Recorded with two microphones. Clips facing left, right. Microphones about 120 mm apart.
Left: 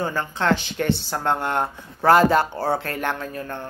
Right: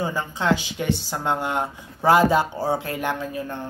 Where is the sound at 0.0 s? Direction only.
15° right (ahead or behind).